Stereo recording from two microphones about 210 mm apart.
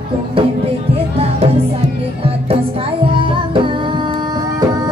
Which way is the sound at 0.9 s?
30° right (ahead or behind).